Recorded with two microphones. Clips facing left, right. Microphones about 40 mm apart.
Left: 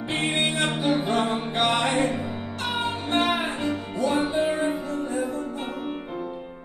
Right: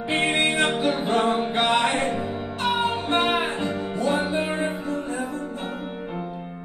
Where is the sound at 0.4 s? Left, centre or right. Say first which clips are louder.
Right 3 dB; right.